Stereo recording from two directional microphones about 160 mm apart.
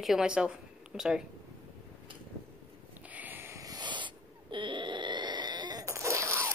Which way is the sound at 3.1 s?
10° right (ahead or behind).